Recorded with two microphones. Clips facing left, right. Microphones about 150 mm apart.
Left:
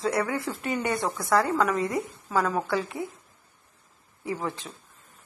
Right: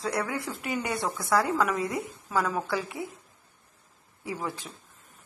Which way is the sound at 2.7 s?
5° right (ahead or behind).